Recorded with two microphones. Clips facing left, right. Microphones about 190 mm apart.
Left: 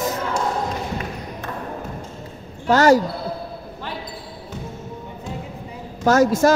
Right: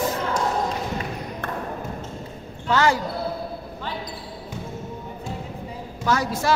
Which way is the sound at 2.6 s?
40° left (ahead or behind).